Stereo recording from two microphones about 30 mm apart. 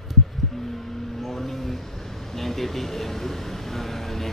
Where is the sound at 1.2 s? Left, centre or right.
Centre.